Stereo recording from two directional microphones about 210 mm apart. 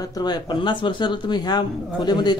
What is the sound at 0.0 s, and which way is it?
Speech, 20° left (ahead or behind).